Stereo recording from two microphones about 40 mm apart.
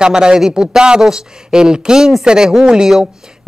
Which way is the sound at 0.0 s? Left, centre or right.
Centre.